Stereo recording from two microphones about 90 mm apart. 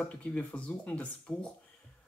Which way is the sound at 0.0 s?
15° left (ahead or behind).